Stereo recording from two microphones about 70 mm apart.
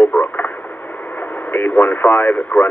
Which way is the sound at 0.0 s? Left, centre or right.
Left.